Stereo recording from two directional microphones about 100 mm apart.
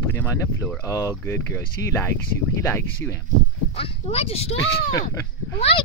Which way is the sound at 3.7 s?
80° left.